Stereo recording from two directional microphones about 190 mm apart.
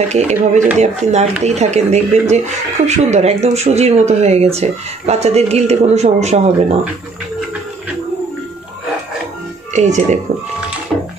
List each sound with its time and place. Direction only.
0.1 s speech: 35° right (ahead or behind)
9.7 s speech: 40° right (ahead or behind)